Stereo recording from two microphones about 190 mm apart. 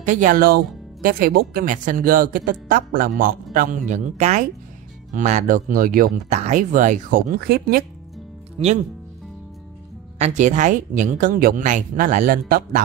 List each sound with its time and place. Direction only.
0.0 s speech: 40° right (ahead or behind)
10.1 s speech: 40° right (ahead or behind)